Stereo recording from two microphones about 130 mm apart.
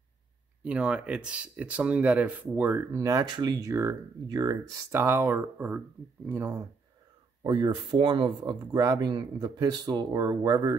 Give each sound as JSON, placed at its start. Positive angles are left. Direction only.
{"t": 0.7, "sound": "speech", "side_deg": -10}
{"t": 3.0, "sound": "speech", "side_deg": -25}
{"t": 4.9, "sound": "speech", "side_deg": -15}
{"t": 7.4, "sound": "speech", "side_deg": -40}